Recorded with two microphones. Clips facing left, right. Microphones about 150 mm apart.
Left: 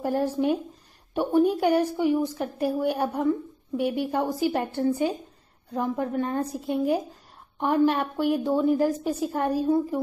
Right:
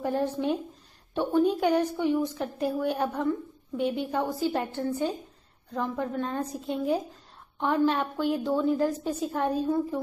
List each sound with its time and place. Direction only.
0.0 s a woman's voice: 10° left (ahead or behind)